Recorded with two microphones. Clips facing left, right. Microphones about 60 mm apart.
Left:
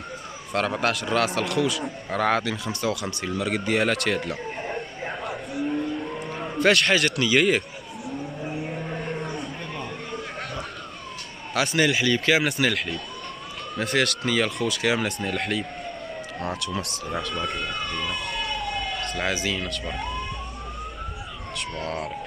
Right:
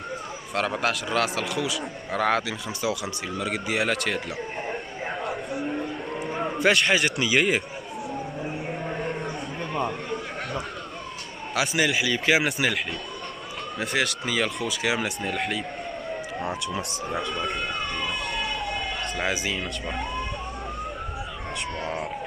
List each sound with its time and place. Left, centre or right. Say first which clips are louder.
0.6 s a man's voice: left 1 dB; centre
5.7 s cattle: left 2 dB; centre
8.5 s a sound: even; centre
11.5 s speech: left 2 dB; centre
17.1 s emergency vehicle: even; centre
19.2 s speech: left 1 dB; centre
21.8 s speech: left 1 dB; centre